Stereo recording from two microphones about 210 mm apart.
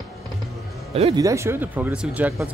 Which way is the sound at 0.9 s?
30° right (ahead or behind).